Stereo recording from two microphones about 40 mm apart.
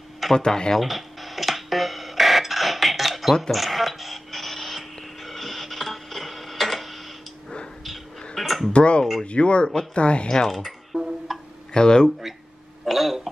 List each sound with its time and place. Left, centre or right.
0.5 s speech: centre
0.8 s music: centre
3.5 s radio: centre
8.4 s a sound: centre
8.7 s speech: left
10.5 s a sound: centre
11.7 s speech: centre
12.8 s throat clearing: centre